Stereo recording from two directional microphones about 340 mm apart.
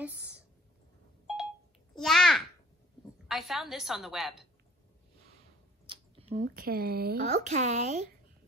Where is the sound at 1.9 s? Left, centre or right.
Centre.